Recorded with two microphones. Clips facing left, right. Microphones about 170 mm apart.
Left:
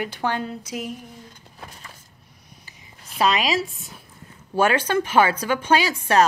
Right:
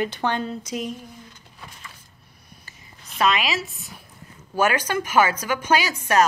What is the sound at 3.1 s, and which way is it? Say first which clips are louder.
A woman's voice: left 1 dB; 35° left (ahead or behind).